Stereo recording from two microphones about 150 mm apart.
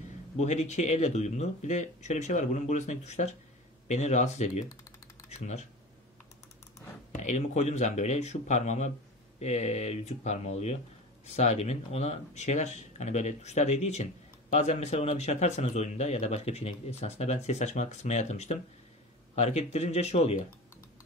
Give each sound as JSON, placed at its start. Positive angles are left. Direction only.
{"t": 0.4, "sound": "speech", "side_deg": 50}
{"t": 7.2, "sound": "speech", "side_deg": 50}